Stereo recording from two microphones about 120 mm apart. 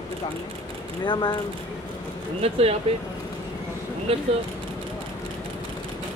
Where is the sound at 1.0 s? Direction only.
40° left (ahead or behind).